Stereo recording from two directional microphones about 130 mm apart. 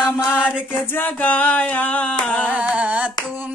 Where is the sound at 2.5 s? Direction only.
10° right (ahead or behind).